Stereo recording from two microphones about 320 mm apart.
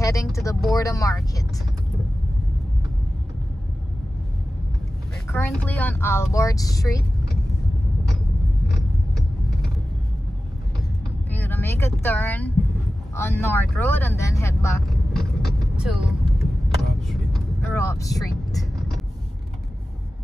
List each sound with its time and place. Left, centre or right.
0.0 s a sound: centre
0.7 s speech: centre
5.3 s speech: centre
11.2 s speech: centre
15.7 s vehicle: centre